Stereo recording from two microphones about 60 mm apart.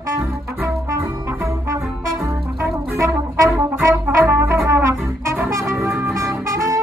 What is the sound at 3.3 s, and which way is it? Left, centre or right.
Brass instrument, right.